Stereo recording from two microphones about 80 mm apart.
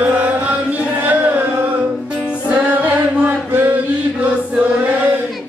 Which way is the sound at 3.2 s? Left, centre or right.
Right.